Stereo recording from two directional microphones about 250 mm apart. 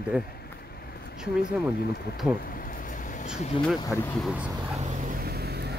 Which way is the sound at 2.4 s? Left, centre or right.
Left.